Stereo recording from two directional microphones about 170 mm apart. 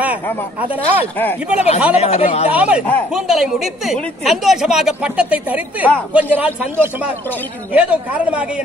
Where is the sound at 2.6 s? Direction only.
5° right (ahead or behind).